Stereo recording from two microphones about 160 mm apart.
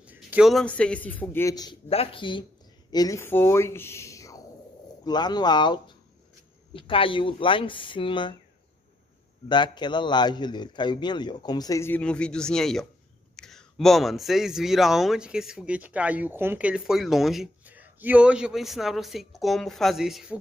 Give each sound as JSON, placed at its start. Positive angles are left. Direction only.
{"t": 0.0, "sound": "a sound", "side_deg": -10}
{"t": 0.5, "sound": "a man's voice", "side_deg": 5}
{"t": 1.5, "sound": "a man's voice", "side_deg": 25}
{"t": 1.9, "sound": "a man's voice", "side_deg": 35}
{"t": 9.5, "sound": "a man's voice", "side_deg": 30}